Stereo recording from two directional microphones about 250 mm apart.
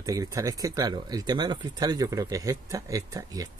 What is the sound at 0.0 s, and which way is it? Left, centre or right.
Speech, centre.